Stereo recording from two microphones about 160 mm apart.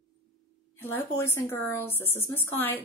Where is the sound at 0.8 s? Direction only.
15° left (ahead or behind).